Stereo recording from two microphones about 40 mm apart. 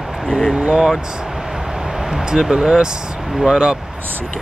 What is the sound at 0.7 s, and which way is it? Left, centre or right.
Speech, centre.